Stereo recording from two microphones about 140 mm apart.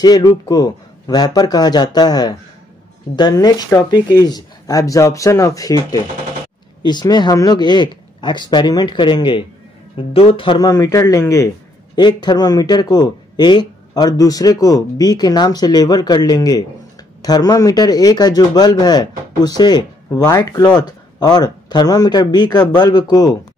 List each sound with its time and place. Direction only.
0.0 s a man's voice: 30° left (ahead or behind)
10.7 s a man's voice: 20° left (ahead or behind)